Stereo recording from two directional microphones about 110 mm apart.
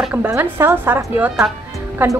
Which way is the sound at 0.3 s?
20° right (ahead or behind).